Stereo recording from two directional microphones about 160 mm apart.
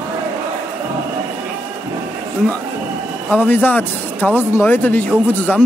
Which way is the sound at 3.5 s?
10° left (ahead or behind).